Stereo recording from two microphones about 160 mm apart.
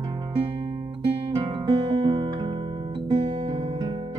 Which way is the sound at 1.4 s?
35° right (ahead or behind).